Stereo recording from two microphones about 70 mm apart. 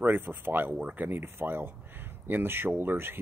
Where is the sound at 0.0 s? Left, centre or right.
Right.